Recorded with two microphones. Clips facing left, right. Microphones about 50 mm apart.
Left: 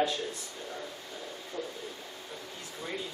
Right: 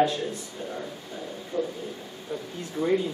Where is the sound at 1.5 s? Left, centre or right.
Centre.